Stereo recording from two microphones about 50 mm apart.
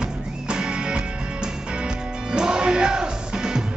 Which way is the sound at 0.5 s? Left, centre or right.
Centre.